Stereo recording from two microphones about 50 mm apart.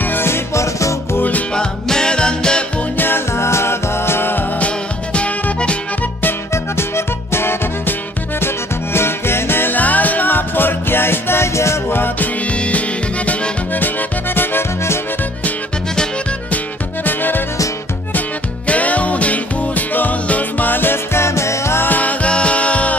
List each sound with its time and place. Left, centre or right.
0.0 s music: left
0.6 s music: left
1.5 s music: centre
3.3 s music: left
4.6 s music: left
7.3 s music: left
8.9 s music: left
9.8 s music: left
11.9 s music: left
12.7 s music: left
17.0 s music: left
18.7 s music: left
21.8 s music: left